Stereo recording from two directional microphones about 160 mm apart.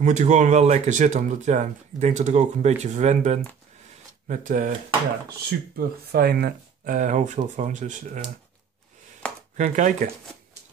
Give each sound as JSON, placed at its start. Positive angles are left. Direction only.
{"t": 0.0, "sound": "speech", "side_deg": -50}
{"t": 5.8, "sound": "speech", "side_deg": -80}
{"t": 9.2, "sound": "chopping", "side_deg": 5}
{"t": 9.6, "sound": "speech", "side_deg": -55}